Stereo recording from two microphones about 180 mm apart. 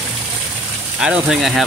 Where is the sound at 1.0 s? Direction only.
5° right (ahead or behind).